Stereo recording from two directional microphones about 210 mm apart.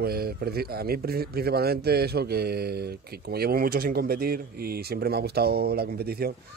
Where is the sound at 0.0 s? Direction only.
45° right (ahead or behind).